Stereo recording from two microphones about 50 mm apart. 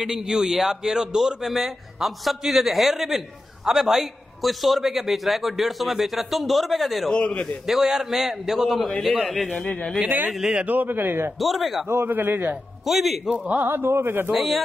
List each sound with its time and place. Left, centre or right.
0.0 s a man's voice: centre
7.1 s a man's voice: left
7.6 s a man's voice: centre
9.7 s a man's voice: left
10.2 s a man's voice: centre
10.5 s a man's voice: right
11.3 s a man's voice: centre
11.9 s a man's voice: right
12.8 s a man's voice: centre
13.6 s a man's voice: right
14.3 s a man's voice: centre